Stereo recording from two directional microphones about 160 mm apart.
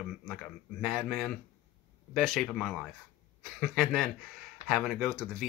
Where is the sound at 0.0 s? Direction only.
Centre (ahead or behind).